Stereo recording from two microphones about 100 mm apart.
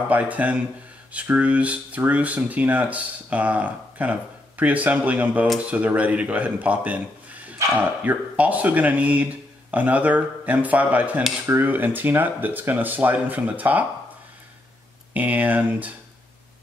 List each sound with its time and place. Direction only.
0.1 s speech: 15° right (ahead or behind)
15.1 s speech: 15° right (ahead or behind)